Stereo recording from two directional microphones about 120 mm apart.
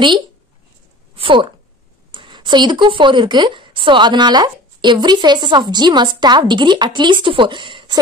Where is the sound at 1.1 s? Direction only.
45° right (ahead or behind).